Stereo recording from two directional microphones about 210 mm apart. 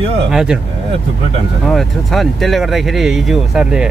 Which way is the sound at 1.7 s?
Centre (ahead or behind).